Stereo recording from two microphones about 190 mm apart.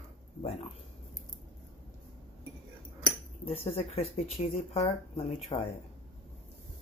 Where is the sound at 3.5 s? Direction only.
30° left (ahead or behind).